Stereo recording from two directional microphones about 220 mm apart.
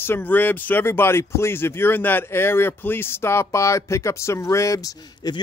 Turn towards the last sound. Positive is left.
turn(degrees=15)  # may be behind; listen again after turning